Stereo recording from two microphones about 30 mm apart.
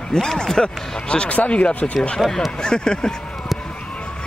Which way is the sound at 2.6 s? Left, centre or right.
Left.